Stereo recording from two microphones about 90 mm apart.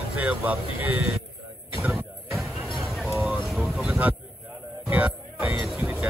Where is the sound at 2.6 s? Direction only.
Centre (ahead or behind).